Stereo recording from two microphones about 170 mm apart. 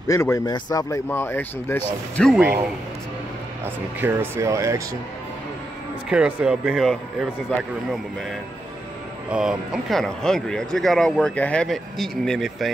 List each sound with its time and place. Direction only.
0.1 s speech: 15° left (ahead or behind)
2.3 s speech: 10° right (ahead or behind)
3.6 s speech: 10° right (ahead or behind)
6.0 s speech: 5° right (ahead or behind)
9.3 s speech: 5° right (ahead or behind)